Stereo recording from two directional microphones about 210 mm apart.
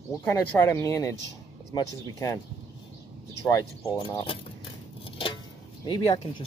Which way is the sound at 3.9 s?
20° left (ahead or behind).